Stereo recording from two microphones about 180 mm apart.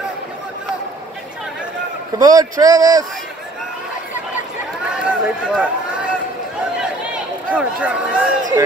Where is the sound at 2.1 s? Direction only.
20° right (ahead or behind).